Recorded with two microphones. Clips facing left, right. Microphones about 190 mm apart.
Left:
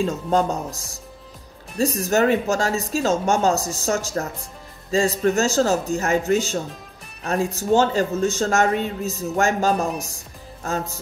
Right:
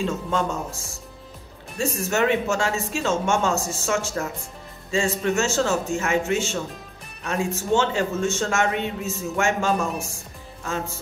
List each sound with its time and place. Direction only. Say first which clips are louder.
0.0 s a man's voice: left 4 dB; 40° left (ahead or behind)
1.8 s a man's voice: left 4 dB; 40° left (ahead or behind)